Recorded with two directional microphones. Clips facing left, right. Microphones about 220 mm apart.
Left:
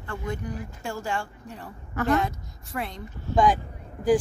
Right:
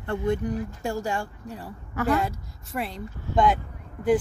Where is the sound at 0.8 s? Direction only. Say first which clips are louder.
Even; 40° right (ahead or behind).